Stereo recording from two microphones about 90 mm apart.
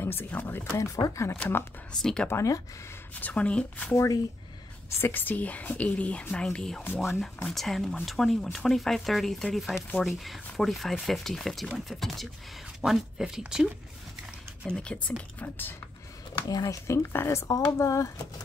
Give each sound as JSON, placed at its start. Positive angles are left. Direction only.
{"t": 0.0, "sound": "speech", "side_deg": 25}
{"t": 0.7, "sound": "speech", "side_deg": 40}
{"t": 1.3, "sound": "speech", "side_deg": 15}
{"t": 2.2, "sound": "speech", "side_deg": 30}
{"t": 3.2, "sound": "speech", "side_deg": 15}
{"t": 3.9, "sound": "speech", "side_deg": 35}
{"t": 5.0, "sound": "speech", "side_deg": 20}
{"t": 14.7, "sound": "speech", "side_deg": 10}
{"t": 16.4, "sound": "speech", "side_deg": 40}
{"t": 17.7, "sound": "speech", "side_deg": 40}